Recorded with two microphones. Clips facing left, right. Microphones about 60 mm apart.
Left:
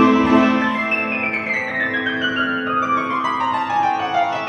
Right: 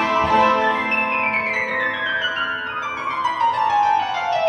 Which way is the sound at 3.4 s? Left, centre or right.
Centre.